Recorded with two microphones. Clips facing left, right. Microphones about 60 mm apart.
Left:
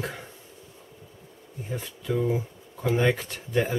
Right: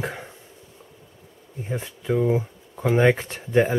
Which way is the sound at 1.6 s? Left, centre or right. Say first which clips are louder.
Right 5 dB; right.